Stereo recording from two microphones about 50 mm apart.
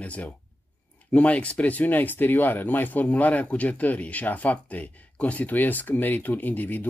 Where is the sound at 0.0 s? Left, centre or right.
Left.